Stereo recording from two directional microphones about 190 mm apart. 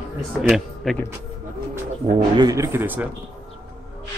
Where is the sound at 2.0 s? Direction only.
20° right (ahead or behind).